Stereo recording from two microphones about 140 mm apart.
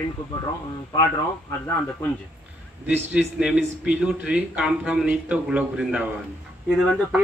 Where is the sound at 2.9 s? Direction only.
10° right (ahead or behind).